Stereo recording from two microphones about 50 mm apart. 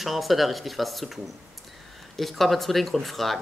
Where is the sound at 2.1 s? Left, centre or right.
Centre.